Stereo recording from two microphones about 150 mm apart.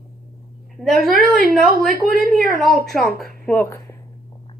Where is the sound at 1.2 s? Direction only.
Centre (ahead or behind).